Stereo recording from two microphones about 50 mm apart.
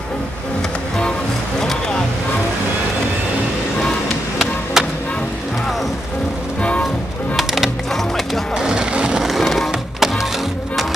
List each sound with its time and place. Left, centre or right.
4.8 s music: centre
7.3 s music: centre
8.5 s skateboard: centre
9.2 s music: centre